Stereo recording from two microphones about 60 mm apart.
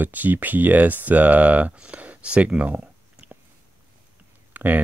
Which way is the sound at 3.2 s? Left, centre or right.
Right.